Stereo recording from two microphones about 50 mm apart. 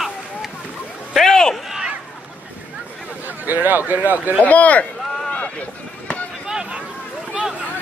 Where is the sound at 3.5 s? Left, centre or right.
Right.